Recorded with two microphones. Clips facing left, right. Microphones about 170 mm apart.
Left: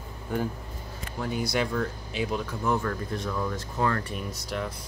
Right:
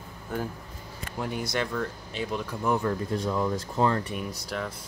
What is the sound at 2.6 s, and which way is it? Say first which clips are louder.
Speech: right 3 dB; 15° right (ahead or behind).